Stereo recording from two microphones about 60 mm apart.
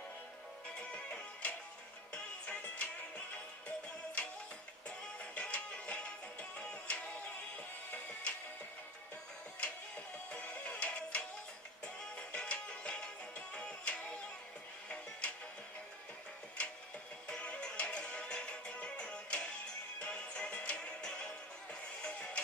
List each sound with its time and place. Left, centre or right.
0.7 s music: left
9.6 s music: left
17.3 s music: centre